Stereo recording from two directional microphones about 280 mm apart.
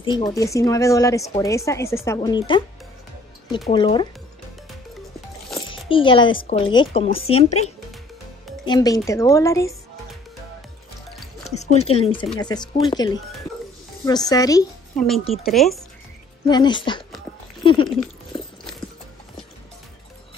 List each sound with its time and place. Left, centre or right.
0.0 s speech: centre
5.7 s speech: centre
8.6 s speech: centre
11.4 s speech: left
15.0 s speech: centre
16.4 s speech: centre
17.8 s a sound: centre